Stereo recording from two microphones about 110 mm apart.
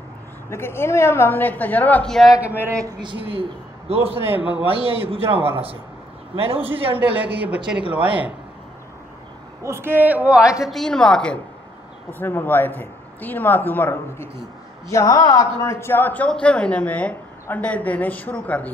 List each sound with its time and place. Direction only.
0.5 s a woman's voice: 20° left (ahead or behind)
2.0 s a man's voice: 5° left (ahead or behind)
2.4 s a woman's voice: 15° right (ahead or behind)
3.0 s a man's voice: 50° right (ahead or behind)
4.2 s a man's voice: 20° right (ahead or behind)
4.6 s a man's voice: 60° right (ahead or behind)
7.1 s a woman's voice: 10° right (ahead or behind)
9.6 s a woman's voice: 25° right (ahead or behind); by 11.3 s 5° left (ahead or behind)
12.1 s speech: 20° left (ahead or behind)
14.9 s a woman's voice: 30° left (ahead or behind); by 18.7 s 15° left (ahead or behind)